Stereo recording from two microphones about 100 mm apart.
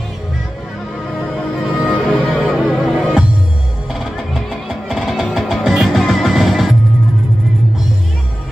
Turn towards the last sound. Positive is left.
turn(degrees=0)  # may be behind; listen again after turning